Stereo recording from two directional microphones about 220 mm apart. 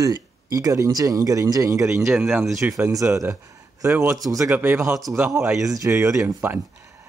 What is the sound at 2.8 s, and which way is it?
Speech, 15° right (ahead or behind).